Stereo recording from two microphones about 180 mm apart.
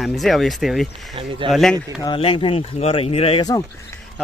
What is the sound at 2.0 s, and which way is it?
Speech, 30° left (ahead or behind).